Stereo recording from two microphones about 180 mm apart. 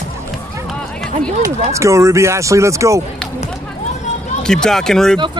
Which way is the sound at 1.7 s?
15° right (ahead or behind).